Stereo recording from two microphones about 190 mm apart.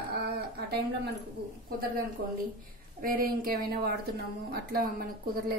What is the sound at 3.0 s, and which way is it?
A woman's voice, 50° right (ahead or behind).